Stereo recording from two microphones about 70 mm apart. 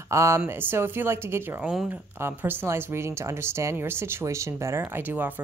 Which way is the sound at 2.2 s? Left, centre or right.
Right.